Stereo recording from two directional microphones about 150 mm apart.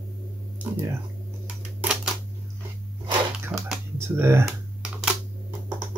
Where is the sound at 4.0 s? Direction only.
15° right (ahead or behind).